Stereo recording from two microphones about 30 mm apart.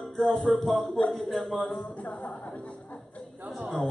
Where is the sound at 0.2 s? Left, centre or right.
Centre.